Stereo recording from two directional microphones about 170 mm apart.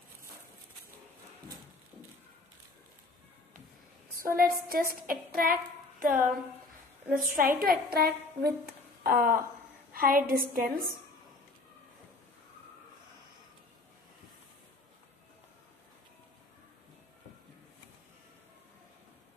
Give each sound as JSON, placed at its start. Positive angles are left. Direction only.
{"t": 4.4, "sound": "a woman's voice", "side_deg": -60}